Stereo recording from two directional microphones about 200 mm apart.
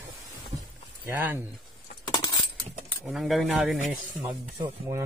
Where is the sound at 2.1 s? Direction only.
20° left (ahead or behind).